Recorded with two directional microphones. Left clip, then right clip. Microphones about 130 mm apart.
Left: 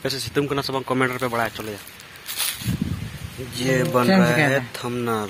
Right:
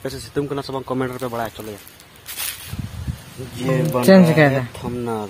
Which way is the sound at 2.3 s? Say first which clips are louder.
Left 3 dB; 30° left (ahead or behind).